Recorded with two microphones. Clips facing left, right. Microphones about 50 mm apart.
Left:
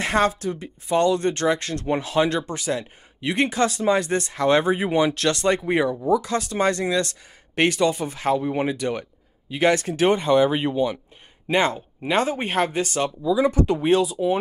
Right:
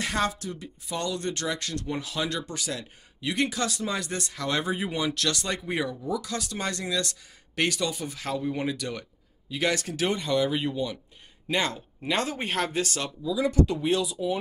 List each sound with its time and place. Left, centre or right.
0.0 s speech: left